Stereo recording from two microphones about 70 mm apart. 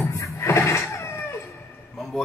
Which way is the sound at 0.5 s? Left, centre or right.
Left.